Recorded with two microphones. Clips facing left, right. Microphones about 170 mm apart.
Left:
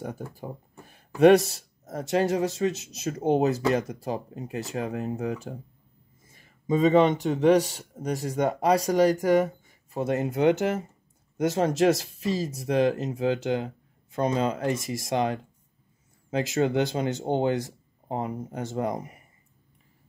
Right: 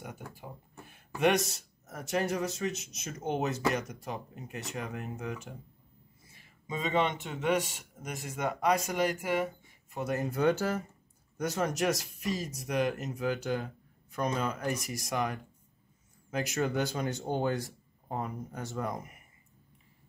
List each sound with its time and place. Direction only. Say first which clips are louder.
0.0 s speech: left 9 dB; 35° left (ahead or behind)
9.9 s speech: left 6 dB; 25° left (ahead or behind)